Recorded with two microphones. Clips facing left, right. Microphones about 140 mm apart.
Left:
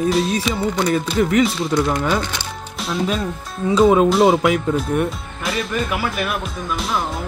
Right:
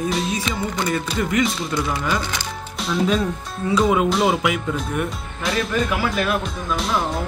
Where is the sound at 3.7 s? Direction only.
35° left (ahead or behind).